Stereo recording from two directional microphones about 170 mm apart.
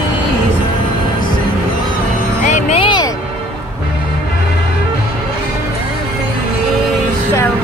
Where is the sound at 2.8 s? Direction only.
25° left (ahead or behind).